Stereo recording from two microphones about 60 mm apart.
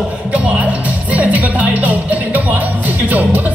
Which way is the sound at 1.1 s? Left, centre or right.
Right.